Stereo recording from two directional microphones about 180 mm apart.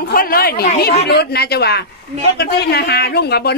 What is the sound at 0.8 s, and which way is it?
Speech, 65° left (ahead or behind).